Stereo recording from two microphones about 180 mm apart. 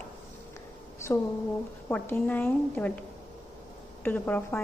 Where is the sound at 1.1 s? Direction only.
15° left (ahead or behind).